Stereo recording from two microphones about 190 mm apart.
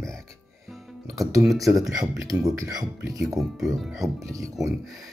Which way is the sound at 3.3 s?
Centre (ahead or behind).